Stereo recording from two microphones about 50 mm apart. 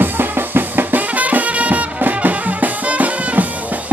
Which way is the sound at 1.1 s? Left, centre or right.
Right.